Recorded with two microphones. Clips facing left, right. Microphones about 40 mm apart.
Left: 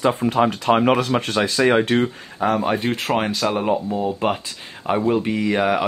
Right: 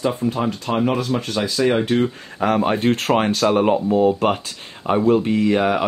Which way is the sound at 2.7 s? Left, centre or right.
Right.